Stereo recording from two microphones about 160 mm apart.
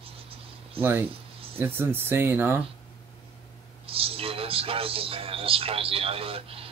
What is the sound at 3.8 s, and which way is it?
A man's voice, 35° right (ahead or behind).